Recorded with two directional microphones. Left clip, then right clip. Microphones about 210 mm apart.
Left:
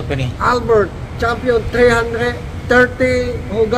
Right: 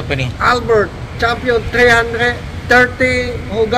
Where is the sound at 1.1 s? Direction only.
10° left (ahead or behind).